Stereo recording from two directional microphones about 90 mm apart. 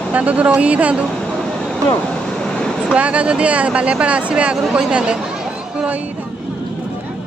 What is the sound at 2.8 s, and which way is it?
Speech, 15° right (ahead or behind).